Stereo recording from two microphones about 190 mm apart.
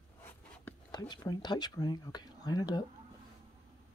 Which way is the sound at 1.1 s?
20° left (ahead or behind).